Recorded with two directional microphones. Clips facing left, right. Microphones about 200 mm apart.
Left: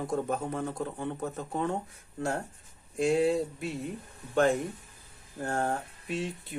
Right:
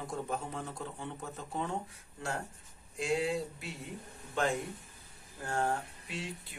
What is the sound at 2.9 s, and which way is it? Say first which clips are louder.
Speech: left 7 dB; 50° left (ahead or behind).